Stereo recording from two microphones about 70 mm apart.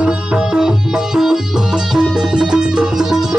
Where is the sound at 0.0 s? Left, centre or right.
Centre.